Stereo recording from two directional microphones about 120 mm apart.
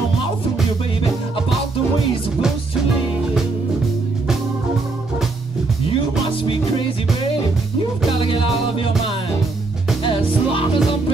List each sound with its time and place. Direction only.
5.9 s music: 45° left (ahead or behind)
8.2 s music: 50° left (ahead or behind)
10.0 s music: 45° left (ahead or behind)